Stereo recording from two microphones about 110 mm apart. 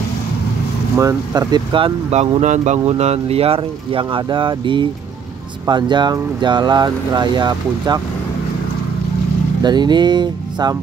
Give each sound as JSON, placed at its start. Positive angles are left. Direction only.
{"t": 0.9, "sound": "speech", "side_deg": -30}
{"t": 1.5, "sound": "speech", "side_deg": -50}
{"t": 2.0, "sound": "speech", "side_deg": -80}
{"t": 3.0, "sound": "speech", "side_deg": -75}
{"t": 9.6, "sound": "speech", "side_deg": -40}